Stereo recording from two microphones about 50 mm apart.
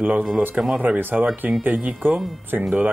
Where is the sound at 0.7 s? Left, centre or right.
Right.